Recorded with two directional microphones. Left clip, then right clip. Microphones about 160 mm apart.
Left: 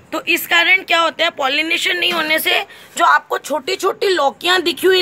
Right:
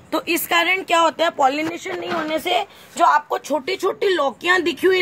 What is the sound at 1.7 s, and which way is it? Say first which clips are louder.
Speech: left 9 dB; 5° right (ahead or behind).